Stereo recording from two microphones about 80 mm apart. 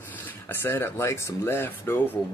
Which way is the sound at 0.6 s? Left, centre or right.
Left.